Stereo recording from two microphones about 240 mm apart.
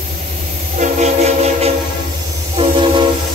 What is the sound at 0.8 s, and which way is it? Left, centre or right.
Train, right.